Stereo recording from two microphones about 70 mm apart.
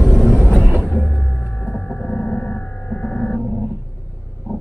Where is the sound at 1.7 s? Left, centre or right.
Centre.